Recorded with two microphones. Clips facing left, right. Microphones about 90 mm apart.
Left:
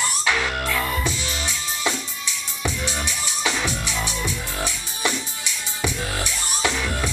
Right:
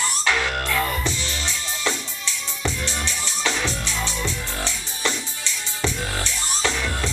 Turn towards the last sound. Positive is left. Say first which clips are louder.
# left 1 dB
turn(degrees=15)  # may be behind; listen again after turning